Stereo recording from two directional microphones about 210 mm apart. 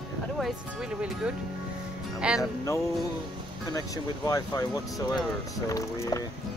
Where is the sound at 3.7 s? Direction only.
15° left (ahead or behind).